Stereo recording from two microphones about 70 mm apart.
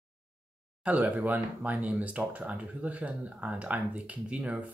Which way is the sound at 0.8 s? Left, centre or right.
Right.